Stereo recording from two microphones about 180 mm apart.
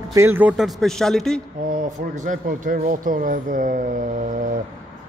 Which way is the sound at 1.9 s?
45° right (ahead or behind).